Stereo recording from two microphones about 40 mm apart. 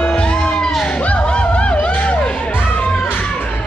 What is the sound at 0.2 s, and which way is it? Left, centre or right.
Music, left.